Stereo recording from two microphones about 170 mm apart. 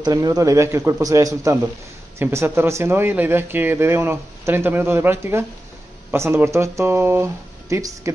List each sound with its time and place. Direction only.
0.0 s speech: 20° right (ahead or behind)